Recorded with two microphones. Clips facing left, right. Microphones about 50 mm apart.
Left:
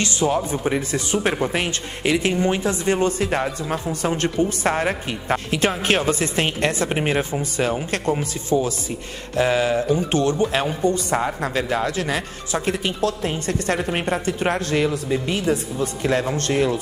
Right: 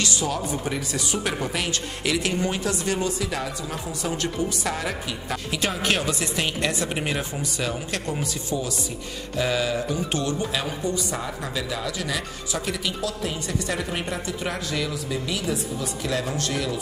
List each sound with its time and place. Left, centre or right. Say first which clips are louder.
0.0 s a woman's voice: left 5 dB; left
3.1 s speech: left 6 dB; left